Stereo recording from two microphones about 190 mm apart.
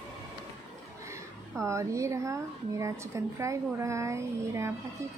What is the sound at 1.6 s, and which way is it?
A woman's voice, 15° right (ahead or behind).